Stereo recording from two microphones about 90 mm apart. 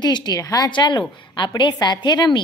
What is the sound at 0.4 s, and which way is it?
Speech, 40° left (ahead or behind).